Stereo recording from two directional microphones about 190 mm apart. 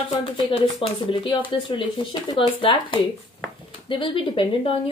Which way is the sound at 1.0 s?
25° left (ahead or behind).